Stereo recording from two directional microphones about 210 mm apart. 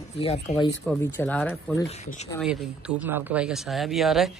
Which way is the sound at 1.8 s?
30° left (ahead or behind).